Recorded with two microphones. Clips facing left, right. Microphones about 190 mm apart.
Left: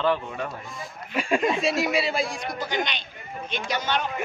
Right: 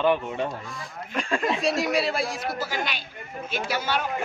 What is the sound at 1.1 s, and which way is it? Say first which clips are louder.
Speech: left 3 dB; 10° left (ahead or behind).